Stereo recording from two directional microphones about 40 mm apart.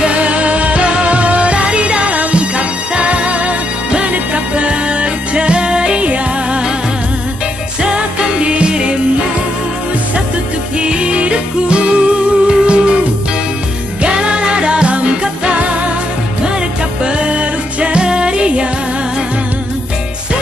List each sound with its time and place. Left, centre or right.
0.0 s music: right
7.8 s music: right
10.8 s music: right
14.0 s music: right
17.0 s music: right